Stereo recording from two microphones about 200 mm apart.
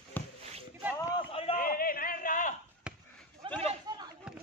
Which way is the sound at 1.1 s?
25° left (ahead or behind).